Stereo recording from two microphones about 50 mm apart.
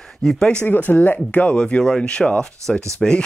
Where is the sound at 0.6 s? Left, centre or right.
Left.